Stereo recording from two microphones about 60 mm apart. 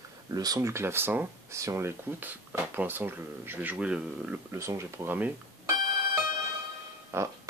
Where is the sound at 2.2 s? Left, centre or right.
Right.